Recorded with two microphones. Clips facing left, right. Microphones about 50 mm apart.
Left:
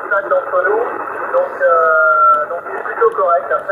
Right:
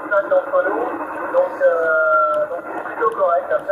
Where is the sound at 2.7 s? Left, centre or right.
Left.